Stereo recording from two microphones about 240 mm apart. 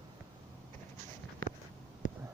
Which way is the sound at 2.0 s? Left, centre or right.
Left.